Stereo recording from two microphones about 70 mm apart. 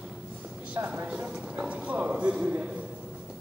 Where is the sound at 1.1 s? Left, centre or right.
Centre.